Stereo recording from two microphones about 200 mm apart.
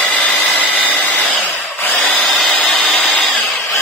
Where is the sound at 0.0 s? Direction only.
5° left (ahead or behind).